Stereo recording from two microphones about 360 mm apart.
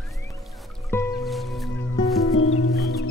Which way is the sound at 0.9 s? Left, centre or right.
Centre.